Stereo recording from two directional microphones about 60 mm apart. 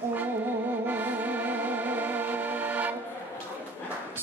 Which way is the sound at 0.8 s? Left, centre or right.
Right.